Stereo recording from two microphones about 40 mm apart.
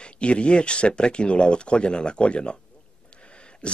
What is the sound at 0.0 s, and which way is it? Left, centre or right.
Speech, left.